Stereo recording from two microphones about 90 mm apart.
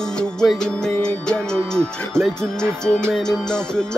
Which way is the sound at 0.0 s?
10° left (ahead or behind).